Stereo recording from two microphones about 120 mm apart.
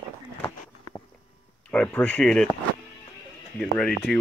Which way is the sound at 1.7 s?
15° left (ahead or behind).